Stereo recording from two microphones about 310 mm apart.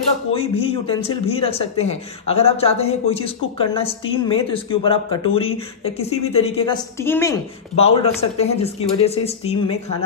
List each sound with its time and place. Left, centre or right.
0.3 s speech: centre